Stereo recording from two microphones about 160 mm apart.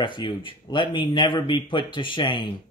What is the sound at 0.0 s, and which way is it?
Speech, 30° left (ahead or behind).